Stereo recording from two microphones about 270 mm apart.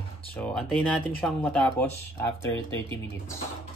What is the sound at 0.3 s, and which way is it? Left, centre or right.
Speech, centre.